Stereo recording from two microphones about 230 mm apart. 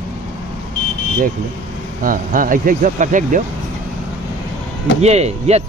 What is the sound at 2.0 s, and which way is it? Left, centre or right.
Speech, right.